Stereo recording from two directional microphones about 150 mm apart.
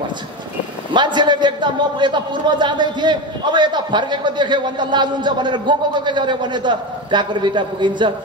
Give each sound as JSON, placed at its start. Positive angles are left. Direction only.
{"t": 0.9, "sound": "a man's voice", "side_deg": -30}